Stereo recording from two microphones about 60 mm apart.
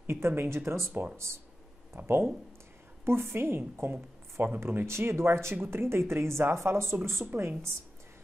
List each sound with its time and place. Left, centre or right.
0.0 s speech: right
2.0 s a woman's voice: right
4.6 s speech: right